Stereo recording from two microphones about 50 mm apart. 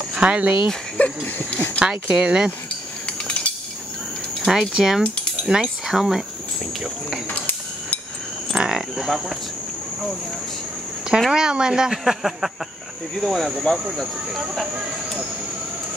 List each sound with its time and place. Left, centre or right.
0.1 s speech: right
0.9 s a sound: left
1.9 s speech: centre
3.1 s a sound: left
4.5 s speech: centre
8.5 s cricket: centre
11.1 s speech: centre